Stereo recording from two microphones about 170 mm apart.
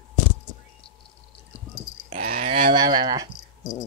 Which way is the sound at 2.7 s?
25° right (ahead or behind).